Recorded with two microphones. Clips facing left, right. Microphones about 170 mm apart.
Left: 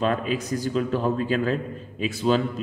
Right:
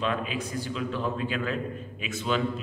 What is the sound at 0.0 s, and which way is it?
A man's voice, 40° left (ahead or behind).